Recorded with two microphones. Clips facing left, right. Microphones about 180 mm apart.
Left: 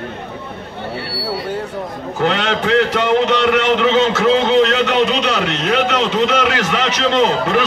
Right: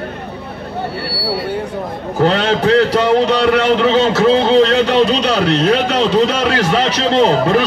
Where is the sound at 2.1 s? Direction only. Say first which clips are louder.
Right 4 dB; 35° right (ahead or behind).